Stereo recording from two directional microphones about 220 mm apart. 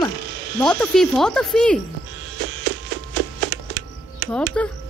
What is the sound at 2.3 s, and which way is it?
Music, 50° right (ahead or behind).